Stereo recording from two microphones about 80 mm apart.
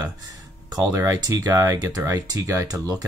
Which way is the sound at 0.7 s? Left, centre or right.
Right.